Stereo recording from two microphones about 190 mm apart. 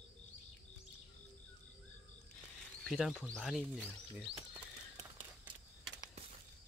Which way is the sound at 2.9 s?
Centre (ahead or behind).